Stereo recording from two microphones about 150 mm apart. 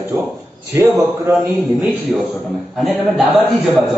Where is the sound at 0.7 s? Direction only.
20° right (ahead or behind).